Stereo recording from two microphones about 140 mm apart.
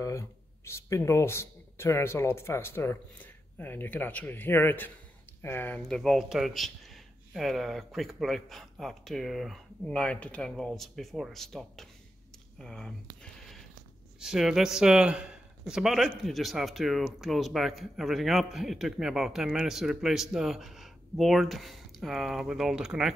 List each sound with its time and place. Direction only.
0.0 s speech: 20° left (ahead or behind)
5.9 s speech: 5° left (ahead or behind)
12.5 s a sound: 5° left (ahead or behind)
14.2 s speech: 5° right (ahead or behind)